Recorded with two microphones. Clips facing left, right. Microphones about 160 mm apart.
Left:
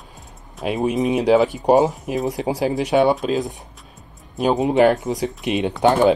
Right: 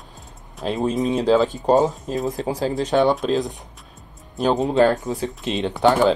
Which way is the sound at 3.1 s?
Centre (ahead or behind).